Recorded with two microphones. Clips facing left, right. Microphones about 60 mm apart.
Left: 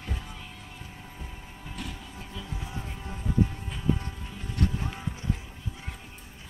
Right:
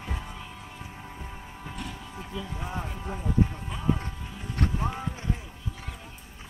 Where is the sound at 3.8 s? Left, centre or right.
Right.